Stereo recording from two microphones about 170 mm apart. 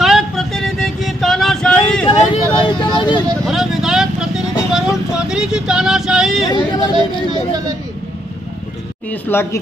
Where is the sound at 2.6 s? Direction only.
25° left (ahead or behind).